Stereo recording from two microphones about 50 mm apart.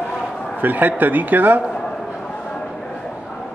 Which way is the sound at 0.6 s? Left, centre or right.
Right.